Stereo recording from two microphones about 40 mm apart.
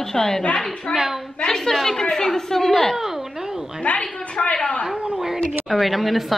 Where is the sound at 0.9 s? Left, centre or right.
Centre.